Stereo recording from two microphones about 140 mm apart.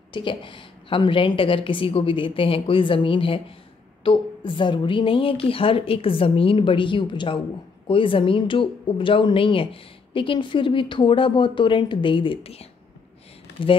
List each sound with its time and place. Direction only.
0.1 s speech: 35° left (ahead or behind)